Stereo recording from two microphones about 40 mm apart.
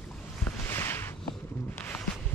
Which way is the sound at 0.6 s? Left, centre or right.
Left.